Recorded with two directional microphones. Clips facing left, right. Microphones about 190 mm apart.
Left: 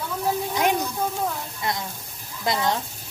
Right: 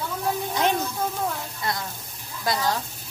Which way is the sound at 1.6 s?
20° left (ahead or behind).